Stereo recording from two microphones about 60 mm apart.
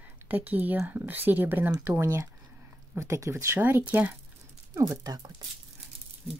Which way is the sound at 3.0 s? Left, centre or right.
Right.